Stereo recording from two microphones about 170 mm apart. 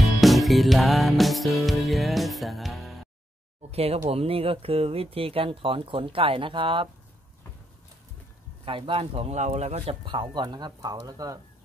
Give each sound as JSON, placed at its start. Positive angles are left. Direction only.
{"t": 0.2, "sound": "music", "side_deg": 0}
{"t": 3.7, "sound": "speech", "side_deg": -35}
{"t": 8.6, "sound": "speech", "side_deg": -30}
{"t": 10.0, "sound": "speech", "side_deg": -25}